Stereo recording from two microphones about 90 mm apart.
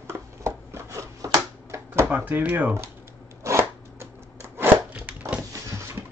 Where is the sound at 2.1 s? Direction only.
20° right (ahead or behind).